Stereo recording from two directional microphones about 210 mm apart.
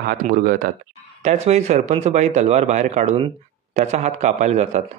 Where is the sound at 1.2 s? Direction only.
30° right (ahead or behind).